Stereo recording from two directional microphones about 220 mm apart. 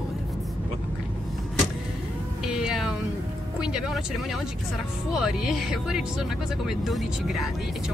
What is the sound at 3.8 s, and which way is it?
Speech, centre (ahead or behind).